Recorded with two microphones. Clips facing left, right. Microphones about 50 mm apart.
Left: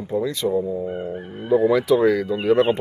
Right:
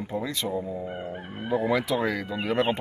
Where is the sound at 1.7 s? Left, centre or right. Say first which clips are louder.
Left 8 dB; centre.